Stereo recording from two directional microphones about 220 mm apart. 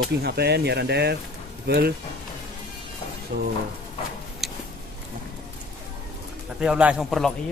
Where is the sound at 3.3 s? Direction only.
50° right (ahead or behind).